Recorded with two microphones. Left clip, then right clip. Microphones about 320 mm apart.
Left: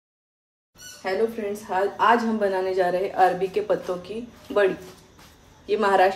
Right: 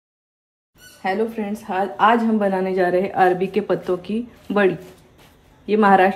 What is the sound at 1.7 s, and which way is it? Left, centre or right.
A woman's voice, centre.